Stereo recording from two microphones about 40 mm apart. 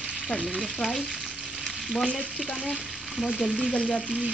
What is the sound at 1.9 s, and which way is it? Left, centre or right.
Frying, centre.